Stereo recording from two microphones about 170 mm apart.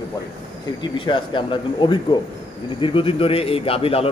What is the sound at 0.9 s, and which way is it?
A man's voice, 30° left (ahead or behind).